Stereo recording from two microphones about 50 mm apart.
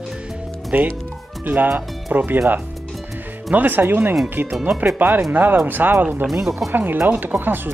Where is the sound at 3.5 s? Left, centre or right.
Right.